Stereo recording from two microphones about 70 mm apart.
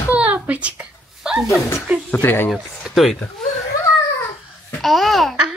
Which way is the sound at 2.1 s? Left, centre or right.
Left.